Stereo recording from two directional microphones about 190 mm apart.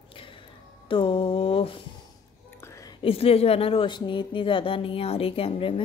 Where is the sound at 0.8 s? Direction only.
30° left (ahead or behind).